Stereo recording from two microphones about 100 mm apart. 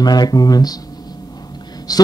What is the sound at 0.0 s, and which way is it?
Speech, 40° left (ahead or behind).